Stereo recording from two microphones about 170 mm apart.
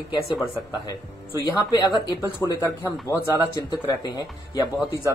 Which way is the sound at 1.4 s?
25° left (ahead or behind).